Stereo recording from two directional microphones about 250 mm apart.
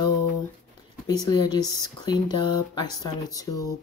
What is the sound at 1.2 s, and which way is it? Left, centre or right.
Speech, centre.